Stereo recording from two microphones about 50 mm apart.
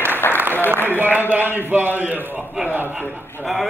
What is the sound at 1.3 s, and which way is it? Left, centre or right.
Speech, right.